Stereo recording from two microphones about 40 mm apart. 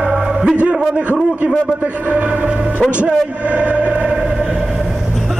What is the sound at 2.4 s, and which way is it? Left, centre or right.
A man's voice, right.